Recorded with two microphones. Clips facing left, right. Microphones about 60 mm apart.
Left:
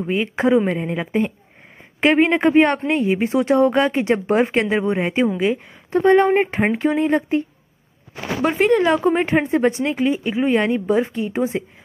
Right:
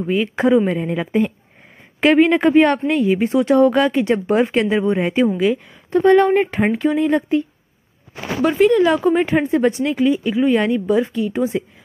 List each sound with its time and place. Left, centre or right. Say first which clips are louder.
0.0 s a woman's voice: right 2 dB; centre
2.9 s speech: right 2 dB; left
3.3 s speech: right 2 dB; left
3.5 s a woman's voice: right 2 dB; left
8.5 s speech: right 3 dB; left
8.8 s speech: right 2 dB; centre